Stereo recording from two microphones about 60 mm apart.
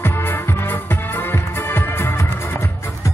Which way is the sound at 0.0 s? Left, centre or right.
Left.